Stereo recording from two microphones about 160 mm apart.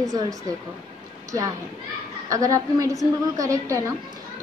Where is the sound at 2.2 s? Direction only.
20° right (ahead or behind).